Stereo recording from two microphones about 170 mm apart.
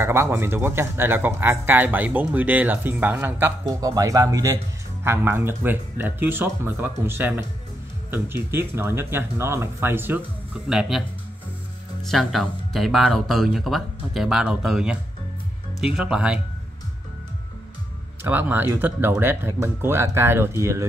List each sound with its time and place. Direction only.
0.0 s speech: 15° right (ahead or behind)
10.7 s speech: centre (ahead or behind)
18.2 s speech: 10° right (ahead or behind)